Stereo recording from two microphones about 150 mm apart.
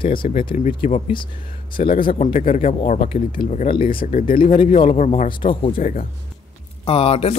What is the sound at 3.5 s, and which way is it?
Speech, 40° left (ahead or behind).